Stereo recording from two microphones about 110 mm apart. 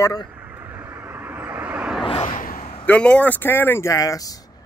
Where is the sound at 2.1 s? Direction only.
55° left (ahead or behind).